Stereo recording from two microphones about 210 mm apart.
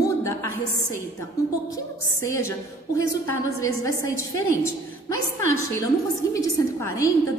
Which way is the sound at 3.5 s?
15° left (ahead or behind).